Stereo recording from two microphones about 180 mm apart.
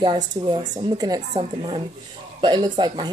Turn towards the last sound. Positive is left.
turn(degrees=-25)  # may be behind; listen again after turning